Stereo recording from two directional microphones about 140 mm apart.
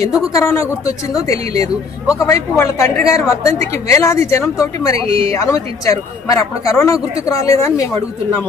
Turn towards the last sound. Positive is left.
turn(degrees=20)  # may be behind; listen again after turning